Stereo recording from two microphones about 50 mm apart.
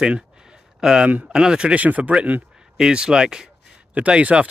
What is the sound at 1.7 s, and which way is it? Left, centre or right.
Speech, right.